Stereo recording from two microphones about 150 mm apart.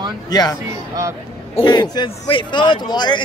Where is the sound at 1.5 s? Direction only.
30° left (ahead or behind).